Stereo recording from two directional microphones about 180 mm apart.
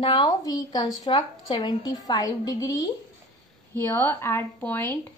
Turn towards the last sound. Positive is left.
turn(degrees=10)  # may be behind; listen again after turning